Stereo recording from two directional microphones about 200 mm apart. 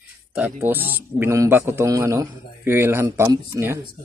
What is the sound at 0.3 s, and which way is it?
A man's voice, 10° right (ahead or behind).